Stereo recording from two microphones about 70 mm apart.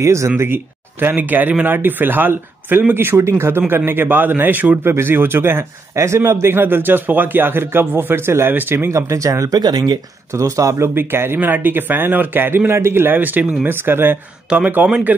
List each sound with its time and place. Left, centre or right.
0.0 s speech: right
0.4 s a man's voice: right
9.6 s speech: right
10.3 s a man's voice: right